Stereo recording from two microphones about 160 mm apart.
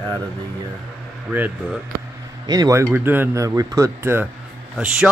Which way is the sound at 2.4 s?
25° right (ahead or behind).